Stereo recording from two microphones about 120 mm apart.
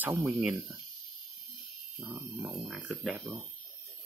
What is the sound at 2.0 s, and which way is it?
Speech, 10° right (ahead or behind).